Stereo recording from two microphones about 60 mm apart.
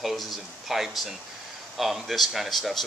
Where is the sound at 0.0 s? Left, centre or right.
Centre.